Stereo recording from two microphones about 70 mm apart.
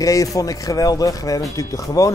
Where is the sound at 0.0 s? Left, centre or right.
Left.